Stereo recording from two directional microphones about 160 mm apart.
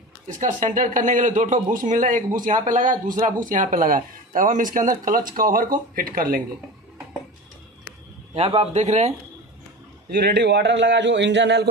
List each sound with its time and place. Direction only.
0.4 s a man's voice: 55° right (ahead or behind)
8.4 s a man's voice: 35° right (ahead or behind)
10.1 s a man's voice: 85° right